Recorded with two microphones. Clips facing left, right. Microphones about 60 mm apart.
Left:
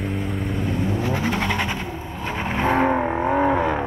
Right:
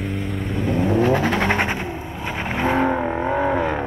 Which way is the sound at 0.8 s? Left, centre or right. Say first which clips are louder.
Right 8 dB; right.